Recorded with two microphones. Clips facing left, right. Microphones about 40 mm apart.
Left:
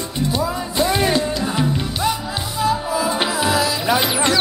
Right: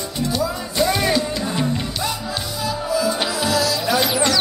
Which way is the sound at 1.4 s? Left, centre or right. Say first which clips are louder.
Left 2 dB; centre.